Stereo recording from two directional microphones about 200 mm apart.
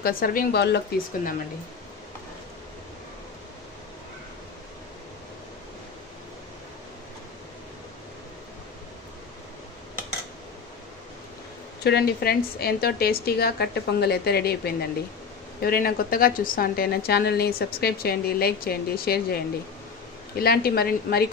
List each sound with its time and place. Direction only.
0.0 s a woman's voice: 45° left (ahead or behind)
11.8 s a woman's voice: 55° left (ahead or behind)